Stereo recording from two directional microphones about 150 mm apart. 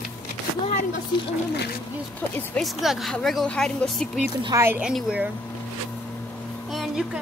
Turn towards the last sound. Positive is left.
turn(degrees=0)  # may be behind; listen again after turning